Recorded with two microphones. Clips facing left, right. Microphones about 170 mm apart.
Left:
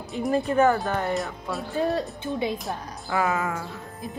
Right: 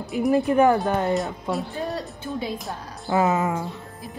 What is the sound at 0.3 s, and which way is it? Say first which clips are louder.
Speech: right 3 dB; 15° right (ahead or behind).